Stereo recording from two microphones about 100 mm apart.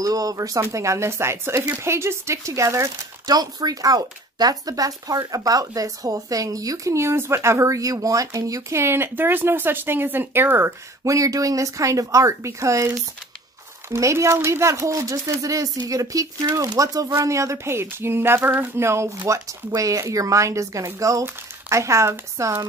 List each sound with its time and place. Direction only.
0.0 s speech: 35° right (ahead or behind); by 10.7 s 20° right (ahead or behind)
11.1 s speech: 35° right (ahead or behind)